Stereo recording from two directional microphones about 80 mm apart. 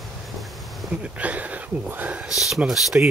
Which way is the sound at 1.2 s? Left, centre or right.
Centre.